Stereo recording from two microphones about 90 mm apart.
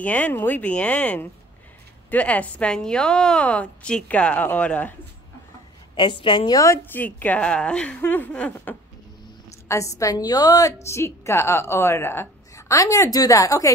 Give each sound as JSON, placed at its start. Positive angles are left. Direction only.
{"t": 0.0, "sound": "a woman's voice", "side_deg": 15}
{"t": 5.9, "sound": "a woman's voice", "side_deg": 65}
{"t": 6.9, "sound": "a woman's voice", "side_deg": 20}
{"t": 8.0, "sound": "a sound", "side_deg": 20}
{"t": 9.7, "sound": "a woman's voice", "side_deg": 35}
{"t": 10.9, "sound": "a woman's voice", "side_deg": 30}